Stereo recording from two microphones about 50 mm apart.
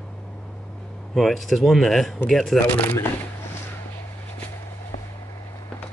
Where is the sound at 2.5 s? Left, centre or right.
Left.